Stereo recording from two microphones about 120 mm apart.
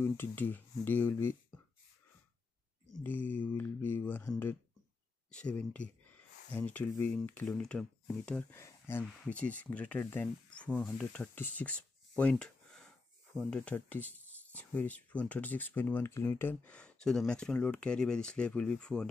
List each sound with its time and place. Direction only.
0.0 s speech: 15° left (ahead or behind)
3.0 s speech: 15° left (ahead or behind)
8.5 s a sound: 20° left (ahead or behind)
9.2 s speech: 10° left (ahead or behind)
11.3 s a sound: 15° left (ahead or behind)
13.3 s speech: 15° left (ahead or behind)